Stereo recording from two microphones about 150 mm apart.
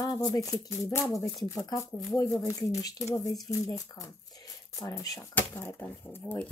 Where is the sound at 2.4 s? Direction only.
20° left (ahead or behind).